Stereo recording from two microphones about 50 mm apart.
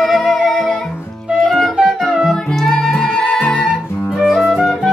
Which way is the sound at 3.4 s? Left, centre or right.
Left.